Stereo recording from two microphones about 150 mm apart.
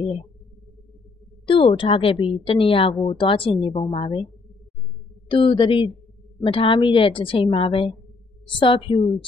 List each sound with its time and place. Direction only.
1.4 s a woman's voice: 35° left (ahead or behind)
5.3 s a woman's voice: 35° left (ahead or behind)